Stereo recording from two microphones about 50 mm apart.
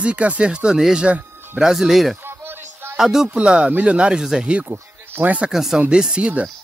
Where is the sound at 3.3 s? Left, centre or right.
Right.